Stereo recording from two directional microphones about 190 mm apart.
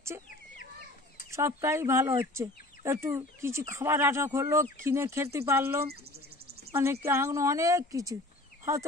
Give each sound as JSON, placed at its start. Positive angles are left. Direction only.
{"t": 1.3, "sound": "speech", "side_deg": -15}